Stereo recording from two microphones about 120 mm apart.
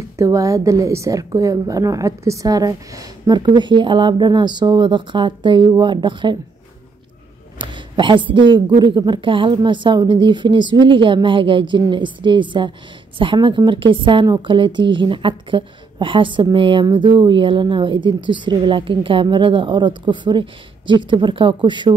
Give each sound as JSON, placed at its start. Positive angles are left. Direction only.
{"t": 0.2, "sound": "a woman's voice", "side_deg": -25}
{"t": 7.5, "sound": "a woman's voice", "side_deg": -40}